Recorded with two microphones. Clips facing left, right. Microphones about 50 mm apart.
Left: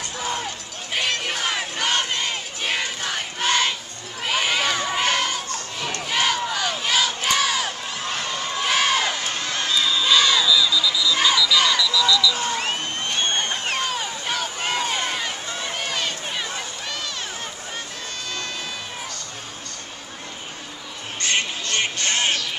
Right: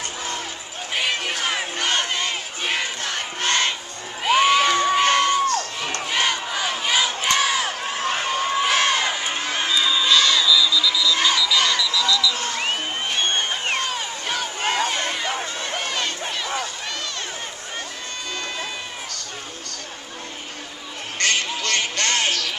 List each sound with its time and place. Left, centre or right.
0.2 s run: centre
0.9 s crowd: centre
7.8 s a sound: right
8.6 s children shouting: centre
10.1 s crowd: centre
11.8 s alarm: centre
12.5 s music: centre
13.7 s a sound: centre
21.2 s music: right